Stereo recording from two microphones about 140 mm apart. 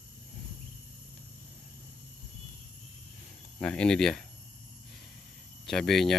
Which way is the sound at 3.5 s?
5° left (ahead or behind).